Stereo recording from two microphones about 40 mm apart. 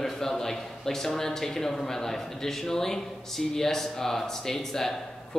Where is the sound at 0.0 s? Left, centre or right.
Centre.